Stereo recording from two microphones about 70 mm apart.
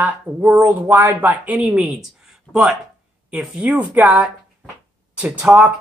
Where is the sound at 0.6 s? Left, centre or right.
Right.